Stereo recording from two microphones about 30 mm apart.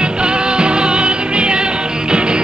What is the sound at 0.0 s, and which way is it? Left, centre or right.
Music, right.